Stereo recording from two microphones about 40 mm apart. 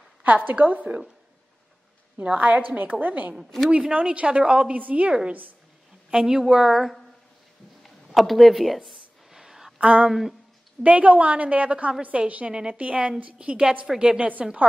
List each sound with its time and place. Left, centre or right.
0.2 s a woman's voice: right
2.3 s a woman's voice: right
3.7 s a woman's voice: right
6.2 s a woman's voice: centre
7.8 s a sound: centre
9.8 s a sound: right
10.0 s a woman's voice: centre
10.8 s a woman's voice: right